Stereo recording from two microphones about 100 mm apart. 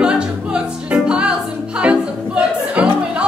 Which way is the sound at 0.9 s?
10° right (ahead or behind).